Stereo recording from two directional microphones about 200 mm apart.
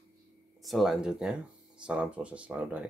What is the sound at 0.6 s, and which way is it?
Speech, centre (ahead or behind).